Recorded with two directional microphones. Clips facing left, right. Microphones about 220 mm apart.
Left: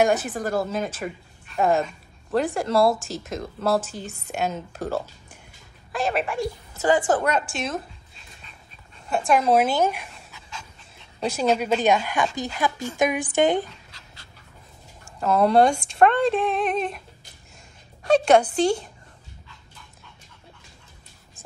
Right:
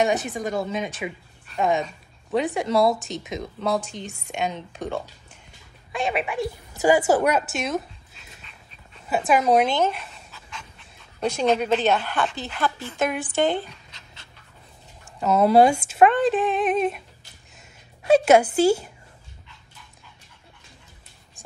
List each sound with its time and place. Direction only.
0.0 s a woman's voice: centre (ahead or behind)
13.7 s dog: 20° right (ahead or behind)
15.1 s speech: centre (ahead or behind)
18.0 s a woman's voice: 5° right (ahead or behind)